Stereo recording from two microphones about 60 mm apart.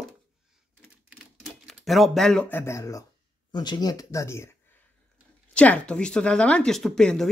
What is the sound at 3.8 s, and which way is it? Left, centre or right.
Speech, left.